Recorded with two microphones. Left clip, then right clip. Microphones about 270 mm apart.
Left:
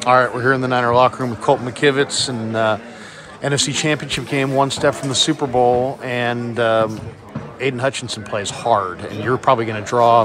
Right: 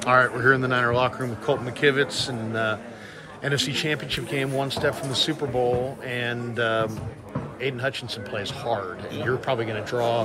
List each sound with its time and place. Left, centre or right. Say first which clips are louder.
0.0 s speech: left 5 dB; centre